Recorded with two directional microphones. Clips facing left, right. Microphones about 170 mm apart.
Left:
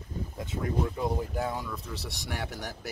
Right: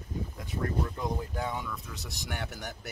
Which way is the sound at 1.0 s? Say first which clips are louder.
Left 3 dB; 5° left (ahead or behind).